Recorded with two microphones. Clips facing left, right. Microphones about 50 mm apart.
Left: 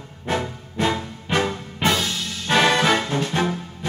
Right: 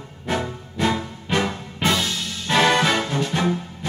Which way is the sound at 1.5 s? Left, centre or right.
Left.